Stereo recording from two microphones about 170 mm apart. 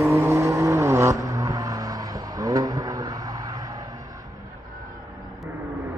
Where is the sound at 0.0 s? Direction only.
15° right (ahead or behind).